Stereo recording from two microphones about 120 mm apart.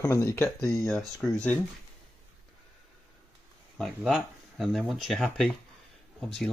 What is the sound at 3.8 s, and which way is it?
Speech, centre (ahead or behind).